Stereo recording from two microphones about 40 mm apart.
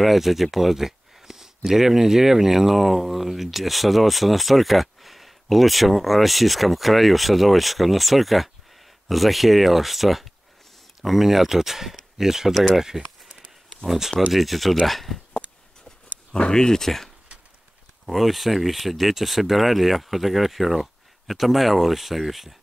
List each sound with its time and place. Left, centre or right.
0.0 s speech: centre
15.8 s a sound: left
18.0 s speech: centre